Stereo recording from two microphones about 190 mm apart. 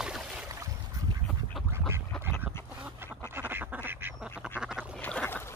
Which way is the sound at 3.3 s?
10° right (ahead or behind).